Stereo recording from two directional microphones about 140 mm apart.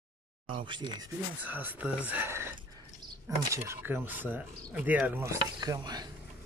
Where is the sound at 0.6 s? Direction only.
35° right (ahead or behind).